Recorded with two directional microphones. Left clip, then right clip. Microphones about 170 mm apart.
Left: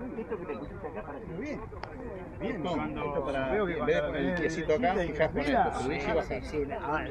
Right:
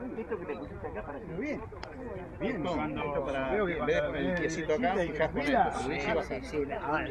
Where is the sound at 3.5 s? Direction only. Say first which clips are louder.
Even; 15° right (ahead or behind).